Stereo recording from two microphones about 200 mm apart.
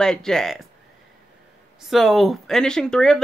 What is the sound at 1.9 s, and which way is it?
Speech, centre (ahead or behind).